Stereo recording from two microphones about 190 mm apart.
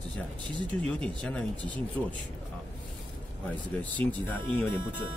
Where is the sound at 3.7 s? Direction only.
10° left (ahead or behind).